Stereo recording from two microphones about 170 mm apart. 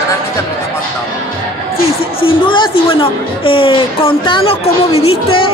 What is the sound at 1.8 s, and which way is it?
A woman's voice, 35° left (ahead or behind).